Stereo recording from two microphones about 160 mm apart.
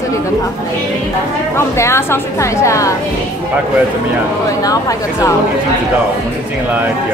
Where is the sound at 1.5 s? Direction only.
15° left (ahead or behind).